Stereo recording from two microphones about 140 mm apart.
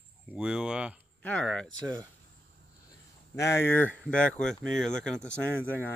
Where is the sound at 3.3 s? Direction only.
20° left (ahead or behind).